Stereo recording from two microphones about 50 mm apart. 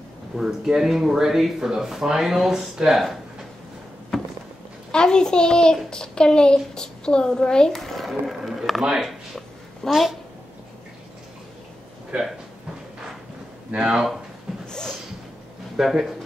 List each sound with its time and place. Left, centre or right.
0.4 s speech: centre
4.1 s walk: centre
4.9 s a child's voice: centre
8.4 s a sound: centre
8.9 s a woman's voice: centre
12.1 s speech: right
13.7 s speech: centre
14.7 s a sound: centre
15.8 s speech: centre